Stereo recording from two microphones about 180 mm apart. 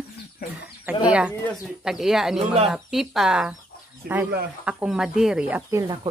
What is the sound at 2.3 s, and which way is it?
Speech, 35° right (ahead or behind).